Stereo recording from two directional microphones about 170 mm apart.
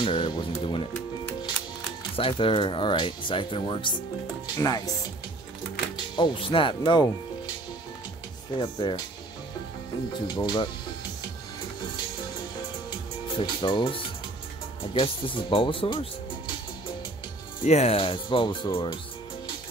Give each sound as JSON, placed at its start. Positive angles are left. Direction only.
{"t": 0.0, "sound": "music", "side_deg": 30}
{"t": 2.1, "sound": "speech", "side_deg": 30}
{"t": 5.9, "sound": "speech", "side_deg": 30}
{"t": 8.5, "sound": "speech", "side_deg": 25}
{"t": 10.1, "sound": "speech", "side_deg": 25}
{"t": 13.4, "sound": "speech", "side_deg": 30}
{"t": 17.6, "sound": "speech", "side_deg": 40}